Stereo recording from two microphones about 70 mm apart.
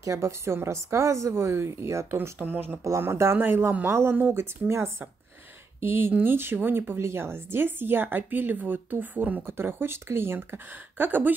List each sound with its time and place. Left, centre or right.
0.0 s a woman's voice: right
2.3 s speech: right
3.0 s speech: right
3.3 s speech: right